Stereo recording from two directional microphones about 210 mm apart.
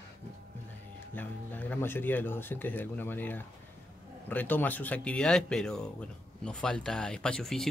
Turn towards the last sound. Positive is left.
turn(degrees=0)  # may be behind; listen again after turning